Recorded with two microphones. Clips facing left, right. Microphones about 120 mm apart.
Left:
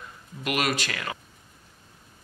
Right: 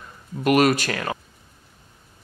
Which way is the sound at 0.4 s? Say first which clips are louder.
Right 10 dB; 45° right (ahead or behind).